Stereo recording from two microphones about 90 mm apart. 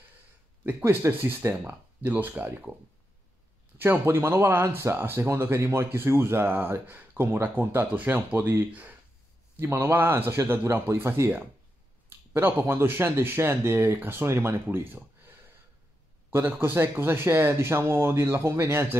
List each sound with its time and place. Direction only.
0.7 s speech: 20° right (ahead or behind)
3.7 s speech: 25° right (ahead or behind)